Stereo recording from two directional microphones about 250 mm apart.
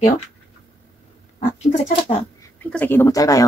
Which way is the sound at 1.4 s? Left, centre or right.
Left.